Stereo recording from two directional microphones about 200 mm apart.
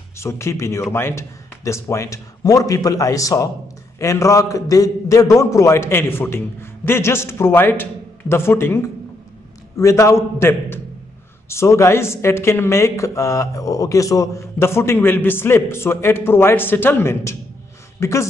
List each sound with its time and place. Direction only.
0.2 s speech: 15° left (ahead or behind)
9.8 s speech: 15° left (ahead or behind)